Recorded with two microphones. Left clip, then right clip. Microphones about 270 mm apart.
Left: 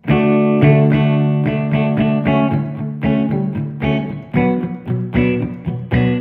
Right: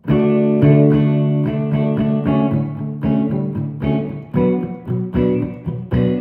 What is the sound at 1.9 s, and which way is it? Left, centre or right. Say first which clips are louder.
Music: left 3 dB; centre.